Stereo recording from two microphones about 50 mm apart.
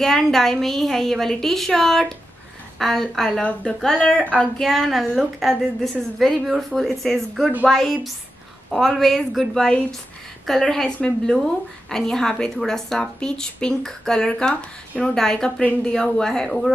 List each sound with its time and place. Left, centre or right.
0.0 s a woman's voice: centre
4.2 s a sound: left
4.6 s a woman's voice: centre
9.5 s a woman's voice: centre
14.5 s speech: left
15.1 s a woman's voice: centre